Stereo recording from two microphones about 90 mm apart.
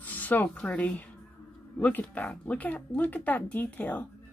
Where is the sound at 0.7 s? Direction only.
15° left (ahead or behind).